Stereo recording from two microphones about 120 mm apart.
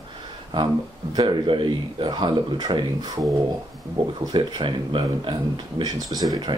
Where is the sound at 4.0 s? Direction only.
45° right (ahead or behind).